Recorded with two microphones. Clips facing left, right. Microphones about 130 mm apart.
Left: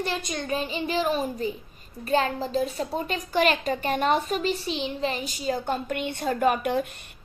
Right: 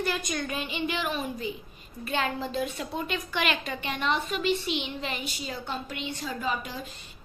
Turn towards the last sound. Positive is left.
turn(degrees=60)  # may be behind; listen again after turning